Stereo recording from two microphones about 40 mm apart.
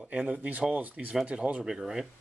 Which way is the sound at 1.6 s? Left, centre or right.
Centre.